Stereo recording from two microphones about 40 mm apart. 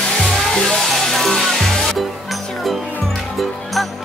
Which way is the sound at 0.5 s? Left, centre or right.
Centre.